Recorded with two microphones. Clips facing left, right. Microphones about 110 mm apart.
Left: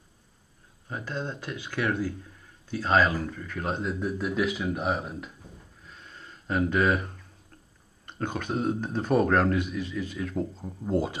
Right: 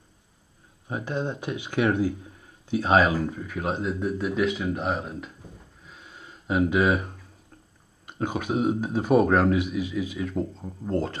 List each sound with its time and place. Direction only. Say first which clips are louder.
0.8 s speech: right 5 dB; 15° right (ahead or behind); by 5.3 s centre (ahead or behind)
5.8 s a sound: right 1 dB; 5° right (ahead or behind)
8.0 s speech: right 3 dB; 5° right (ahead or behind)